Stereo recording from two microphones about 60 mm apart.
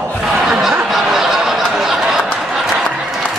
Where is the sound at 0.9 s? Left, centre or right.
Centre.